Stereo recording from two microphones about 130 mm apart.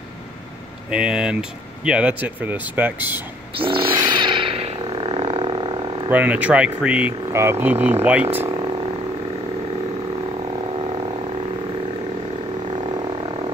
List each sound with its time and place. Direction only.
0.8 s speech: 5° right (ahead or behind)
3.5 s a sound: 40° right (ahead or behind)
6.0 s speech: 10° right (ahead or behind)